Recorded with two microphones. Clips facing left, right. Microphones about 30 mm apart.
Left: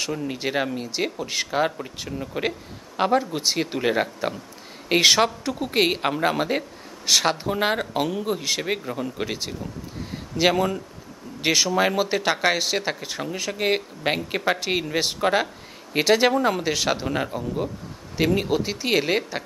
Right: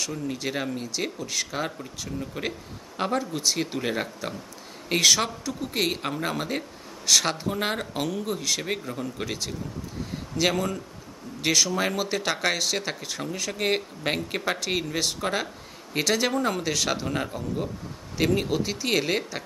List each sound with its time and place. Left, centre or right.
0.0 s speech: left
4.8 s speech: left